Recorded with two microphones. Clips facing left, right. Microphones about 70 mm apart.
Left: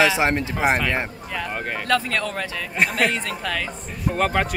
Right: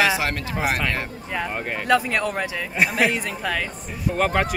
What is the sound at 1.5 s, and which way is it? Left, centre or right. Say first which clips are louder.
Speech: right 2 dB; centre.